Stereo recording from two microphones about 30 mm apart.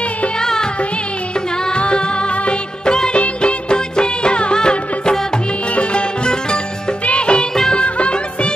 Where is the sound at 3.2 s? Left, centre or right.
Left.